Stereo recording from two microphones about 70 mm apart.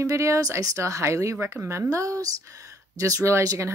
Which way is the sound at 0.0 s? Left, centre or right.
Right.